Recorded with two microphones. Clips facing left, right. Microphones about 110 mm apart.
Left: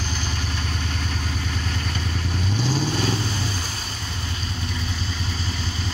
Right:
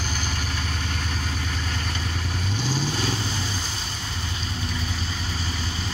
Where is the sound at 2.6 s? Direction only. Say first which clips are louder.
Left 3 dB; 20° left (ahead or behind).